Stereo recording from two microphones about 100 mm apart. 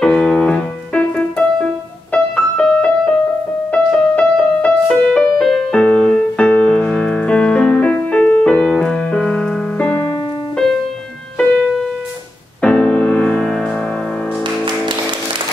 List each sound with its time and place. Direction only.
0.0 s music: 5° left (ahead or behind)
12.6 s music: 15° left (ahead or behind)